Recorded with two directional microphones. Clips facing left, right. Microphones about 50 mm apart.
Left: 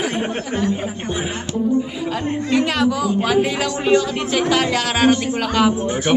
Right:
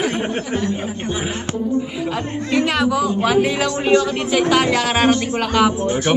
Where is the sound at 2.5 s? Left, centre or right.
Centre.